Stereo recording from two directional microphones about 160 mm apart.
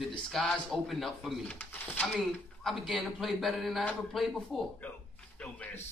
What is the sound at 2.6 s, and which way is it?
Speech, centre (ahead or behind).